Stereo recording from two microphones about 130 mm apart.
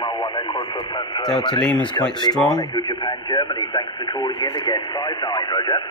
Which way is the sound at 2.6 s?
30° left (ahead or behind).